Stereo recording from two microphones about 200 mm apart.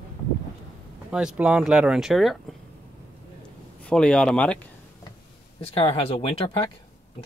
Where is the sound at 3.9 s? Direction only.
5° left (ahead or behind).